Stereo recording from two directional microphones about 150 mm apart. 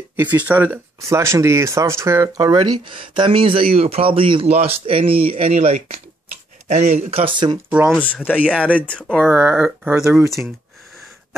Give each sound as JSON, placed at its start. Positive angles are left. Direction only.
{"t": 0.1, "sound": "speech", "side_deg": -15}
{"t": 8.0, "sound": "speech", "side_deg": 10}
{"t": 9.3, "sound": "speech", "side_deg": -10}